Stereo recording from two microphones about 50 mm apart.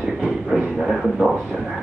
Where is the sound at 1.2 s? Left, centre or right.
Right.